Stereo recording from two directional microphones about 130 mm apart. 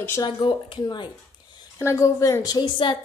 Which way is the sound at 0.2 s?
35° left (ahead or behind).